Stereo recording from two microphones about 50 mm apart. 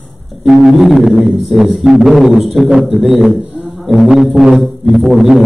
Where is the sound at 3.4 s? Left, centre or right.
Right.